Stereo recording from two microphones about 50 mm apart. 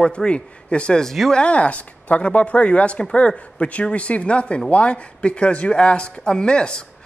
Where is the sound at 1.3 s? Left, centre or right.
Left.